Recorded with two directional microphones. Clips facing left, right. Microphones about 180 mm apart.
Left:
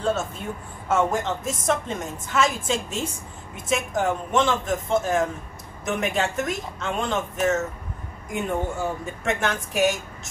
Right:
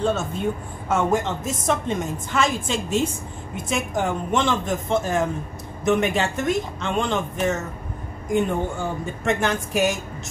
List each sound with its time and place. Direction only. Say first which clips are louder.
0.8 s a woman's voice: right 1 dB; centre (ahead or behind)